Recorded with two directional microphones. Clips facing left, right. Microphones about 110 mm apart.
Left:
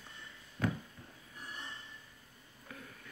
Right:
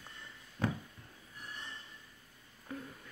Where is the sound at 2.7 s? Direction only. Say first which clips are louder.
Right 7 dB; 30° right (ahead or behind).